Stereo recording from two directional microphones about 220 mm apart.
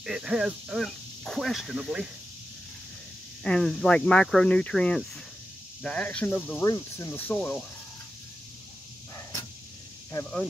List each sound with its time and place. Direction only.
0.0 s speech: 5° right (ahead or behind)
3.4 s speech: 5° left (ahead or behind)
9.1 s a sound: 15° left (ahead or behind)
10.2 s speech: 5° left (ahead or behind)